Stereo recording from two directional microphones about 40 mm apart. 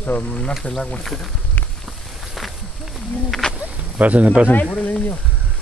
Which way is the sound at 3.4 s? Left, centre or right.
Left.